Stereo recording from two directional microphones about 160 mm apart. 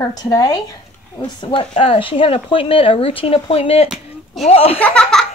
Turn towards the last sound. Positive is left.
turn(degrees=5)  # may be behind; listen again after turning